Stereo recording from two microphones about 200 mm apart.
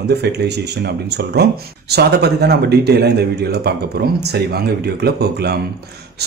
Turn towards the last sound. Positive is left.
turn(degrees=-55)  # may be behind; listen again after turning